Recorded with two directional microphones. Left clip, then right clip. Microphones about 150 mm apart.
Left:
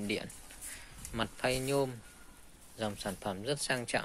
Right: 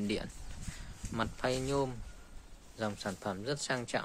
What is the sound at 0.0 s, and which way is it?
Speech, 15° right (ahead or behind).